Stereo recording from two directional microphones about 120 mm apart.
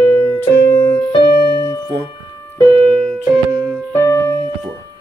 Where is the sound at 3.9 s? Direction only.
20° left (ahead or behind).